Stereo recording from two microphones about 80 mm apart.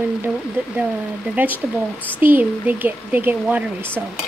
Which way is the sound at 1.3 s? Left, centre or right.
Right.